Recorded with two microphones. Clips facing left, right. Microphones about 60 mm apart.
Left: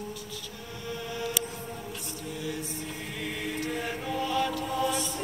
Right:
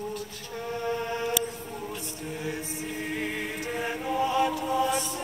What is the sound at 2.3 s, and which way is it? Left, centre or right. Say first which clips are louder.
Music: right 1 dB; right.